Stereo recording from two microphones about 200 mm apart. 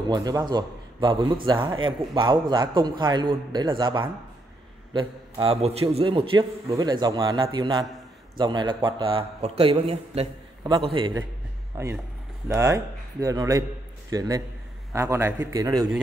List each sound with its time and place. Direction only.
0.1 s a man's voice: 20° right (ahead or behind)
11.7 s speech: 15° right (ahead or behind)